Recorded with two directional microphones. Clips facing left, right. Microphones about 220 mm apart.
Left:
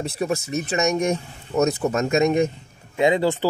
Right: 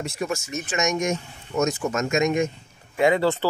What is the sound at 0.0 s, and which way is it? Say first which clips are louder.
Speech: left 3 dB; 35° left (ahead or behind).